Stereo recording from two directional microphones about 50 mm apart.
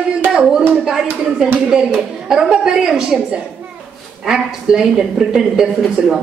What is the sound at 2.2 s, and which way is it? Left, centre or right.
Speech, centre.